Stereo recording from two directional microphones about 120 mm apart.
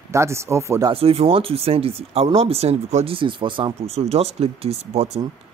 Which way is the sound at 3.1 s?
40° right (ahead or behind).